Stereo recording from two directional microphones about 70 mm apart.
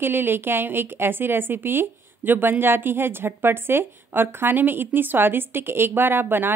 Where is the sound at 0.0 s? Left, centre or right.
Right.